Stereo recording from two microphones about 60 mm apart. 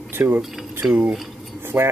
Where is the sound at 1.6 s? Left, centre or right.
Right.